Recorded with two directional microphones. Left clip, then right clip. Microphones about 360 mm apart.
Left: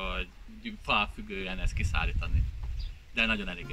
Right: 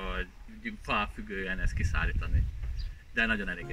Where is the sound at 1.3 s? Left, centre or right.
Centre.